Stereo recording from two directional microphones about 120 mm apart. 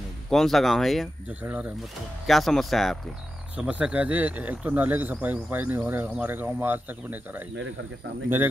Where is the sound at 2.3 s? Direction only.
Centre (ahead or behind).